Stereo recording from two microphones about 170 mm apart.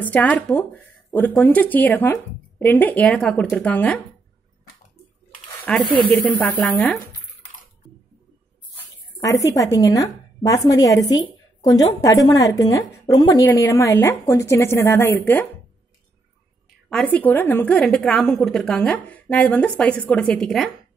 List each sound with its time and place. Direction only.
0.0 s a woman's voice: 10° left (ahead or behind)
5.7 s a woman's voice: 5° left (ahead or behind)
8.7 s a sound: 20° left (ahead or behind)
9.8 s a woman's voice: 20° left (ahead or behind)
16.9 s a woman's voice: 5° left (ahead or behind)